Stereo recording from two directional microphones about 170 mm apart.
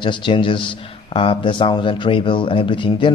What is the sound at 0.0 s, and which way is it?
Speech, 25° left (ahead or behind).